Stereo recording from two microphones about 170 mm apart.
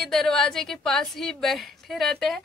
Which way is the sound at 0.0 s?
Centre (ahead or behind).